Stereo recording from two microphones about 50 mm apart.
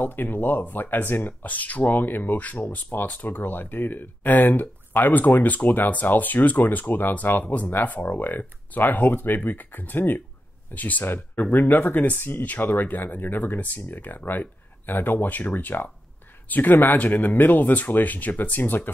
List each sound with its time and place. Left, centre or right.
0.0 s speech: left
1.5 s speech: left